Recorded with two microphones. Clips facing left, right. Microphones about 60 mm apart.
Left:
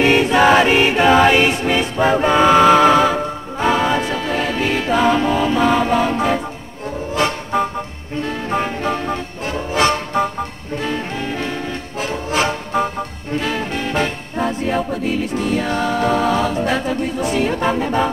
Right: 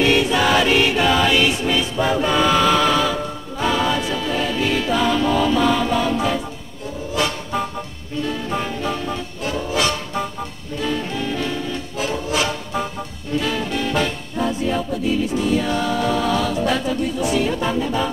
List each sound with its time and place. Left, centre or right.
0.0 s music: left